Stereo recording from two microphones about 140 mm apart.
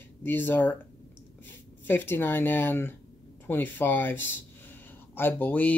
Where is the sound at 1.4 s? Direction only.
15° left (ahead or behind).